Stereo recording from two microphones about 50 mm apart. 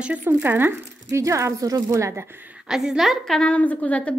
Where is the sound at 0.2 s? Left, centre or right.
Right.